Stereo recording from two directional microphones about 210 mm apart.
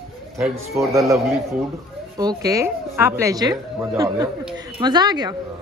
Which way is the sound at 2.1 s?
15° right (ahead or behind).